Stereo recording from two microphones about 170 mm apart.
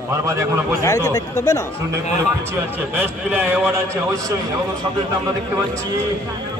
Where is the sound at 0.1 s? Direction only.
15° right (ahead or behind).